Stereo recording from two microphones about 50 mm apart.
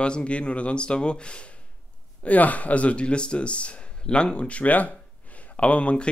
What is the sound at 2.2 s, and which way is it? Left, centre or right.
A man's voice, left.